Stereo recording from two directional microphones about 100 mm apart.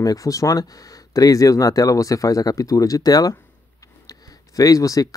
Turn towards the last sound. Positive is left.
turn(degrees=35)  # may be behind; listen again after turning